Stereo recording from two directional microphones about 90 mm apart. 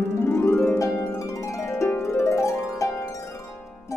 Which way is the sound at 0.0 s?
30° left (ahead or behind).